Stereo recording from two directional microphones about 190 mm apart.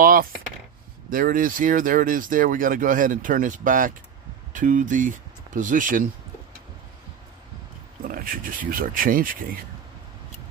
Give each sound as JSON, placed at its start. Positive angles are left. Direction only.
{"t": 0.0, "sound": "chopping", "side_deg": -50}
{"t": 1.1, "sound": "speech", "side_deg": -45}
{"t": 8.0, "sound": "speech", "side_deg": -50}